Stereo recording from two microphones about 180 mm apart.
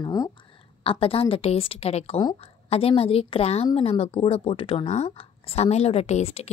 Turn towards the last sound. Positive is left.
turn(degrees=35)  # may be behind; listen again after turning